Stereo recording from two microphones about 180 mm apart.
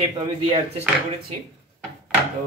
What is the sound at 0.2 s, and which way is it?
Speech, 35° right (ahead or behind).